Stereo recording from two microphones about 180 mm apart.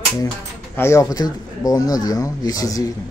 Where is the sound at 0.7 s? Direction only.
15° left (ahead or behind).